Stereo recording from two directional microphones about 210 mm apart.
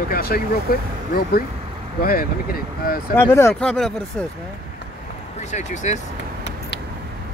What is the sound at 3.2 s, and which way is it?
Speech, 10° left (ahead or behind).